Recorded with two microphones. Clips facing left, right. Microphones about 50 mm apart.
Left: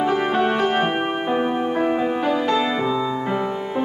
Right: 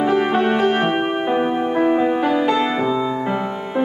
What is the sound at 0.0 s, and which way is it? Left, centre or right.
Music, centre.